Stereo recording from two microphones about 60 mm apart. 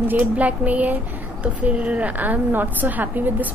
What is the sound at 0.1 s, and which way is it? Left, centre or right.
A woman's voice, right.